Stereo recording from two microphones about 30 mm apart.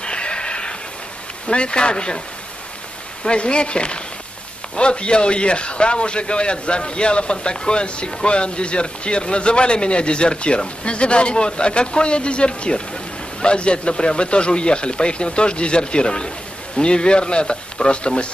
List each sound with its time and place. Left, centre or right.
0.0 s a sound: left
1.5 s a man's voice: left
3.3 s a man's voice: left